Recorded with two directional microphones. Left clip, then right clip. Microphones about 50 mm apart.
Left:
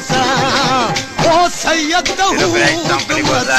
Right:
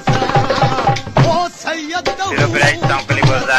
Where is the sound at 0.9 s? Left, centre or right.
Left.